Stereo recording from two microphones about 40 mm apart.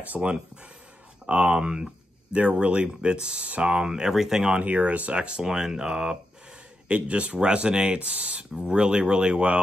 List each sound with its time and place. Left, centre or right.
0.1 s speech: right
1.2 s speech: right
1.6 s speech: right
4.4 s speech: right
5.4 s speech: centre
6.9 s speech: right